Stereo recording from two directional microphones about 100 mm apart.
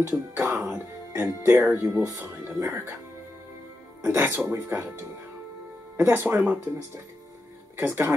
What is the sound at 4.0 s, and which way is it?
Speech, 25° right (ahead or behind).